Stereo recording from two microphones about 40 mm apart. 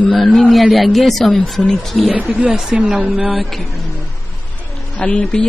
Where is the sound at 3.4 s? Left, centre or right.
Centre.